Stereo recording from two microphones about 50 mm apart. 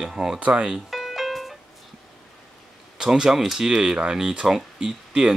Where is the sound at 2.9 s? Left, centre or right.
Centre.